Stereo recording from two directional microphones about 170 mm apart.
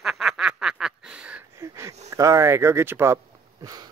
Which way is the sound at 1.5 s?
15° right (ahead or behind).